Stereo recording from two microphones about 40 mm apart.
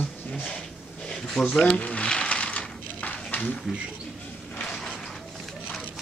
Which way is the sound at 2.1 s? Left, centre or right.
Left.